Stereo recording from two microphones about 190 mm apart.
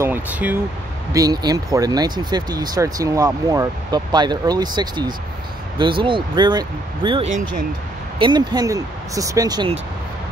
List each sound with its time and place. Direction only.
0.0 s speech: 10° right (ahead or behind)
1.1 s speech: 20° right (ahead or behind)